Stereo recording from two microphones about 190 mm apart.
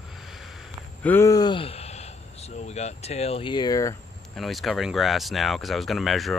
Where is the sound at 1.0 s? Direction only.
10° left (ahead or behind).